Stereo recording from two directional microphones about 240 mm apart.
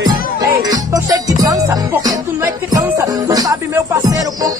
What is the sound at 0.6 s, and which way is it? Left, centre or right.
Music, centre.